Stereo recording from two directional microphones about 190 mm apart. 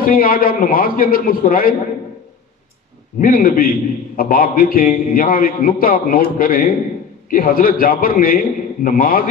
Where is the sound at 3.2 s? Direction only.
50° left (ahead or behind).